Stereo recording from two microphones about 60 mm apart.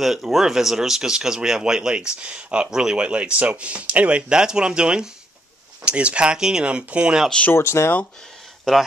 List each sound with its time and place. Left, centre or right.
0.0 s speech: centre; by 4.2 s right
4.3 s speech: centre
7.5 s speech: left
8.7 s speech: centre